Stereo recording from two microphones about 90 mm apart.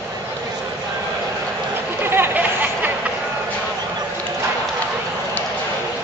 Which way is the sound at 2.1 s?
20° right (ahead or behind).